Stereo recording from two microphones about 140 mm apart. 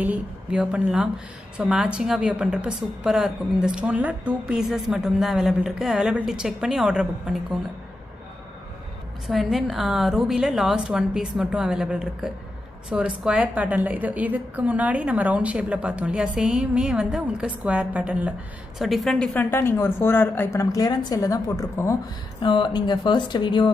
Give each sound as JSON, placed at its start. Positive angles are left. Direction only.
{"t": 0.0, "sound": "speech", "side_deg": -10}
{"t": 9.3, "sound": "a woman's voice", "side_deg": 0}
{"t": 22.4, "sound": "speech", "side_deg": 35}